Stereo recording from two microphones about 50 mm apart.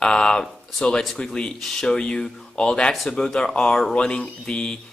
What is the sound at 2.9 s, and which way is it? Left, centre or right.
Speech, centre.